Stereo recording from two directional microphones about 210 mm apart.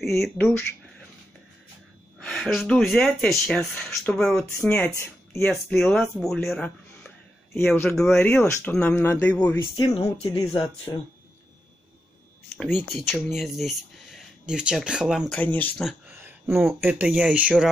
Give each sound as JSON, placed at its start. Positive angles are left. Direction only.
{"t": 0.0, "sound": "speech", "side_deg": 0}
{"t": 2.1, "sound": "speech", "side_deg": 0}
{"t": 9.8, "sound": "speech", "side_deg": 25}
{"t": 12.5, "sound": "speech", "side_deg": 0}